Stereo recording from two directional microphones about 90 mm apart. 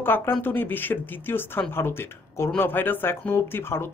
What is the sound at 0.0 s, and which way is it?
Speech, 25° left (ahead or behind).